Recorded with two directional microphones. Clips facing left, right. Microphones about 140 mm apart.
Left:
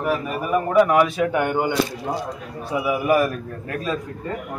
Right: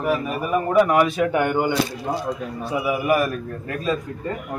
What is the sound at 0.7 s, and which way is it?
Speech, 5° right (ahead or behind).